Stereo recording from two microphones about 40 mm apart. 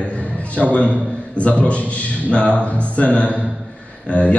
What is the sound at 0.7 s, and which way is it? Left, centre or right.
A man's voice, left.